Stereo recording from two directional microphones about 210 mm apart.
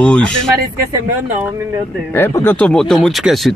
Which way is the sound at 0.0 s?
5° left (ahead or behind).